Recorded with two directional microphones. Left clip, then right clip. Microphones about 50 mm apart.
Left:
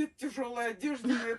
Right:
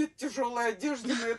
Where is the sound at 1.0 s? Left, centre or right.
Left.